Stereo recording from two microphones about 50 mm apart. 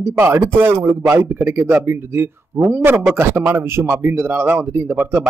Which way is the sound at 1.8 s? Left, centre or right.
Right.